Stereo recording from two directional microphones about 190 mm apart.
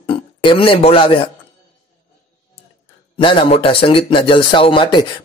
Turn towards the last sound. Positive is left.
turn(degrees=25)  # may be behind; listen again after turning